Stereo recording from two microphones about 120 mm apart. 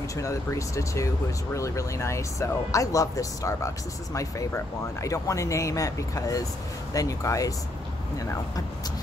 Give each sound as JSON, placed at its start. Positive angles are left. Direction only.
{"t": 0.1, "sound": "speech", "side_deg": 25}